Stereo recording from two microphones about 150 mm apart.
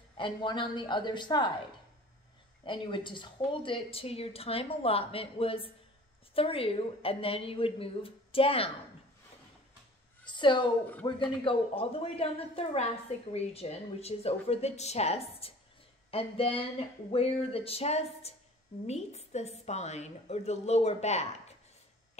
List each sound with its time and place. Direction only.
0.2 s a woman's voice: 30° left (ahead or behind)
2.6 s a woman's voice: 35° left (ahead or behind)
10.2 s a woman's voice: 30° left (ahead or behind); by 21.3 s 45° left (ahead or behind)